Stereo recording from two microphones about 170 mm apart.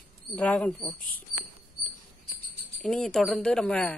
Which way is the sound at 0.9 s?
55° left (ahead or behind).